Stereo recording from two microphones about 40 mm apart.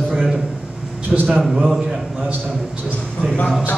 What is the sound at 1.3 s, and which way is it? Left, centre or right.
Speech, centre.